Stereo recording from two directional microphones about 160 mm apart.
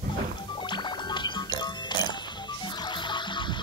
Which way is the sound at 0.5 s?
30° left (ahead or behind).